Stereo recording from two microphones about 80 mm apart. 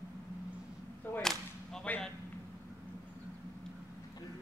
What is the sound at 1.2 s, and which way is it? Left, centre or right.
Whip, centre.